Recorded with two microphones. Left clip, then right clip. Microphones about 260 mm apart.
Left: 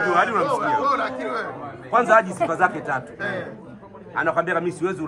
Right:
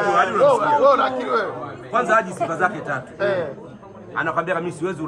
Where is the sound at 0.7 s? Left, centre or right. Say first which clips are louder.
Right 5 dB; centre.